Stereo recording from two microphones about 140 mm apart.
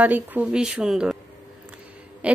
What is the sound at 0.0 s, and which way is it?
Speech, 10° right (ahead or behind).